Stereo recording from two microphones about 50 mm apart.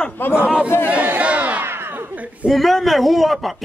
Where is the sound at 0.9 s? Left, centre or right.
Right.